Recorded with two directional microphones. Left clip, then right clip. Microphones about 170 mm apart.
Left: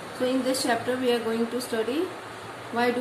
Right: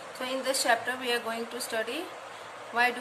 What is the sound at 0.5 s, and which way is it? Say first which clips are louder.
A woman's voice: left 1 dB; 50° right (ahead or behind).